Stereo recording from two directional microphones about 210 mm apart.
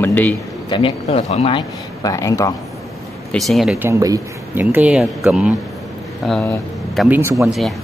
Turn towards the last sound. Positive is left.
turn(degrees=-10)  # may be behind; listen again after turning